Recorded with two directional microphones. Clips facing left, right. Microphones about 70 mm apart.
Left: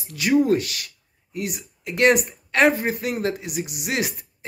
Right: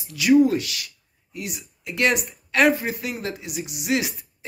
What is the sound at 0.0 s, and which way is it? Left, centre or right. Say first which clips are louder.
Speech: right 3 dB; left.